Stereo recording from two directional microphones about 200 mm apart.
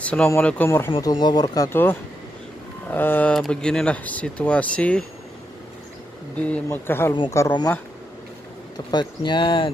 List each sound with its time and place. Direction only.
0.0 s speech: 5° left (ahead or behind)
6.3 s speech: 10° left (ahead or behind)
8.7 s speech: 20° left (ahead or behind)